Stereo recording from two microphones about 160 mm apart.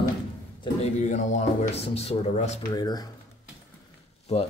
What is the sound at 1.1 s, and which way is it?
Speech, 40° left (ahead or behind).